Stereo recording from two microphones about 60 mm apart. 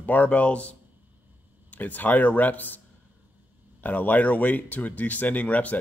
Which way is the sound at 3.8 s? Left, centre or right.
Left.